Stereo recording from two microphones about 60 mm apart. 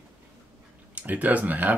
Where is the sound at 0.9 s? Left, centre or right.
Right.